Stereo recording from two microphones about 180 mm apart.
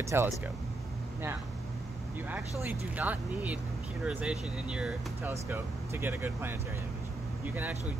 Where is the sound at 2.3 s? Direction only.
10° right (ahead or behind).